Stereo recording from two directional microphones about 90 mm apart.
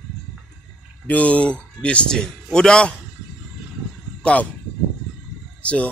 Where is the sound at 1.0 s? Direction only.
15° left (ahead or behind).